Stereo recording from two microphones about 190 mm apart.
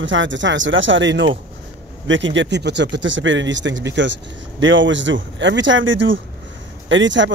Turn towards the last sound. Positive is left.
turn(degrees=-75)  # may be behind; listen again after turning